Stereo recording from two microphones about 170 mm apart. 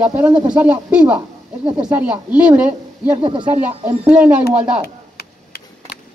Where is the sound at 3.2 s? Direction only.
30° right (ahead or behind).